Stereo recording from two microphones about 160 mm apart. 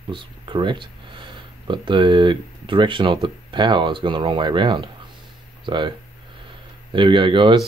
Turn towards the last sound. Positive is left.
turn(degrees=-30)  # may be behind; listen again after turning